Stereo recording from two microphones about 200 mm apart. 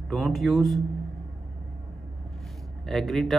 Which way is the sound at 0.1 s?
Centre (ahead or behind).